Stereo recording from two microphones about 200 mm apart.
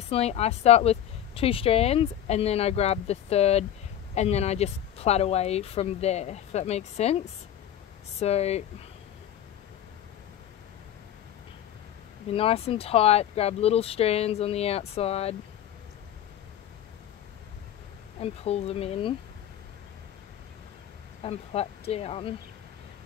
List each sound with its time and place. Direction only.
0.1 s speech: 30° left (ahead or behind)
12.3 s speech: 30° left (ahead or behind)
18.2 s speech: 30° left (ahead or behind)
21.2 s speech: 30° left (ahead or behind)